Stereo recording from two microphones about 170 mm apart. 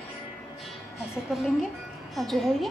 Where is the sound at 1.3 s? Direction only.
Centre (ahead or behind).